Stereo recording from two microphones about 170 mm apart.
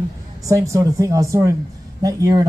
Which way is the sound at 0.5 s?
20° right (ahead or behind).